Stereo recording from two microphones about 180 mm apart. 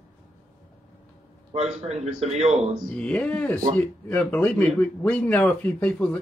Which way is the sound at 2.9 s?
5° left (ahead or behind).